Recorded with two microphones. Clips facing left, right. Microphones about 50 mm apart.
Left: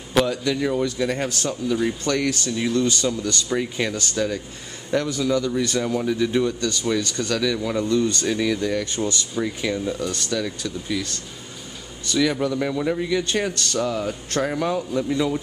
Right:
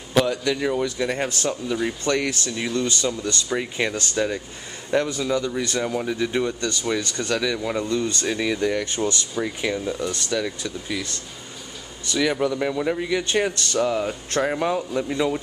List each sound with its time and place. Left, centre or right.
0.2 s a man's voice: centre
1.0 s a man's voice: centre
3.9 s a man's voice: right
8.8 s speech: right
9.3 s a man's voice: centre
12.1 s a man's voice: centre